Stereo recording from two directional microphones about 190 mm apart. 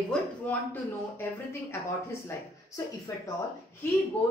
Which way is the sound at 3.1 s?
15° left (ahead or behind).